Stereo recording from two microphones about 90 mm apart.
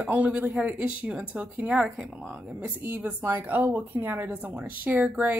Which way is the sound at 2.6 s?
25° right (ahead or behind).